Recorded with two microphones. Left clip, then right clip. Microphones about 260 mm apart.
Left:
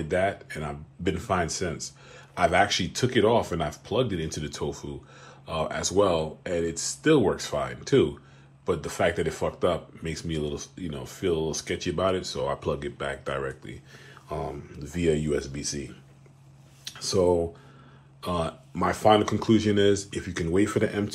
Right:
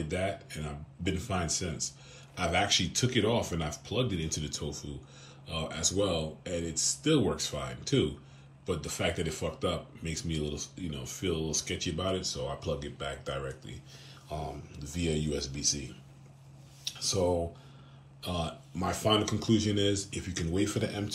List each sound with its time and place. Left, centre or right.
0.5 s speech: centre
12.1 s speech: left
12.5 s speech: centre
14.3 s speech: centre
15.2 s speech: centre
16.8 s a sound: centre
18.3 s speech: centre
20.6 s speech: centre